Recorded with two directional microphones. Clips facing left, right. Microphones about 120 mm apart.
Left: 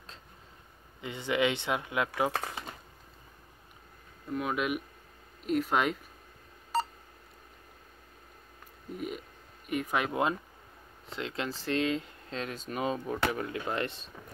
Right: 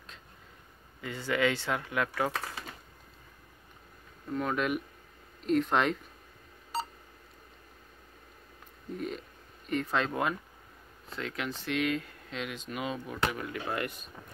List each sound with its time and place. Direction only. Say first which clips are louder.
1.0 s speech: even; 20° left (ahead or behind)
4.3 s speech: right 1 dB; 5° left (ahead or behind)
8.9 s a sound: right 1 dB; 10° left (ahead or behind)
9.7 s speech: even; 10° left (ahead or behind); by 14.1 s 25° left (ahead or behind)